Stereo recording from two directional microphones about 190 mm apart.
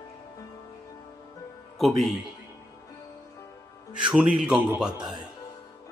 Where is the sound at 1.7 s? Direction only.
Centre (ahead or behind).